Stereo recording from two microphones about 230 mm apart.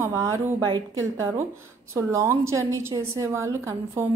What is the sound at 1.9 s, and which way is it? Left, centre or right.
A woman's voice, centre.